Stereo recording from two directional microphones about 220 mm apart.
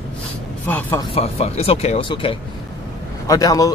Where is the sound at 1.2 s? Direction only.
25° left (ahead or behind).